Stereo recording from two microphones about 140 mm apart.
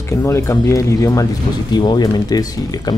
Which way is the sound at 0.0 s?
20° left (ahead or behind).